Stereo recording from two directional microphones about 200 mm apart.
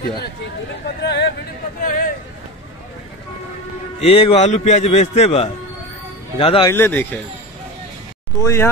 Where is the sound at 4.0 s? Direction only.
25° left (ahead or behind).